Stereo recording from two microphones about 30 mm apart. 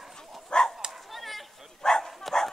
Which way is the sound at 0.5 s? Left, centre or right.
Left.